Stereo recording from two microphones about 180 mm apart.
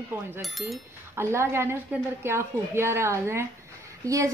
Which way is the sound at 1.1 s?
15° right (ahead or behind).